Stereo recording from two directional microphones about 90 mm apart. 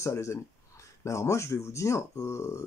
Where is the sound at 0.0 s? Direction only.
35° left (ahead or behind).